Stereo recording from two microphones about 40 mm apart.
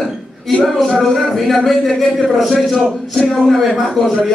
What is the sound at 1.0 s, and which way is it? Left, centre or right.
A man's voice, centre.